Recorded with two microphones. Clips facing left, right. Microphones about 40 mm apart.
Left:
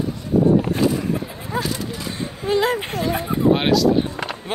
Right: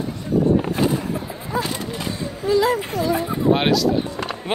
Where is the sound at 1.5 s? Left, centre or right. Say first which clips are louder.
Even; left.